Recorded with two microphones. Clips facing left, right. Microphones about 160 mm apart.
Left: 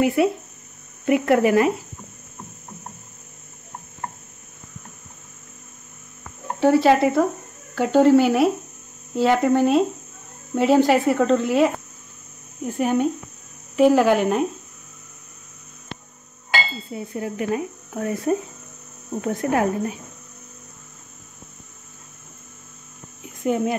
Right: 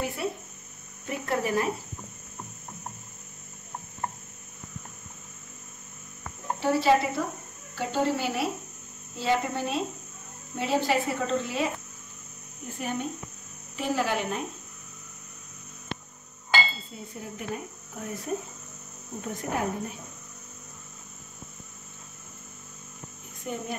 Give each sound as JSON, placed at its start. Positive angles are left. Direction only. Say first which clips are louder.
{"t": 0.0, "sound": "speech", "louder": "left 13 dB", "side_deg": 90}
{"t": 1.0, "sound": "speech", "louder": "left 12 dB", "side_deg": 80}
{"t": 6.6, "sound": "speech", "louder": "left 7 dB", "side_deg": 55}
{"t": 12.7, "sound": "speech", "louder": "left 12 dB", "side_deg": 70}
{"t": 16.9, "sound": "speech", "louder": "left 11 dB", "side_deg": 90}
{"t": 23.4, "sound": "speech", "louder": "left 12 dB", "side_deg": 90}